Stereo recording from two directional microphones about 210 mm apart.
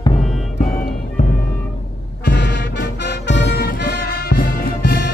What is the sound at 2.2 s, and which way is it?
Music, 55° left (ahead or behind).